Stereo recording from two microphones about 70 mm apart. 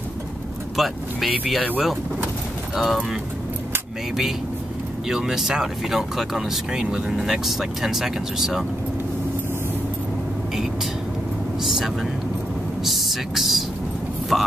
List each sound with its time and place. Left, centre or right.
0.7 s speech: centre
1.6 s speech: centre
2.7 s speech: centre
5.0 s speech: centre
11.6 s speech: centre